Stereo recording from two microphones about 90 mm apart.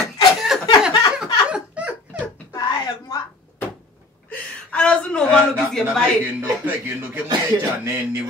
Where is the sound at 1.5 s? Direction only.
15° right (ahead or behind).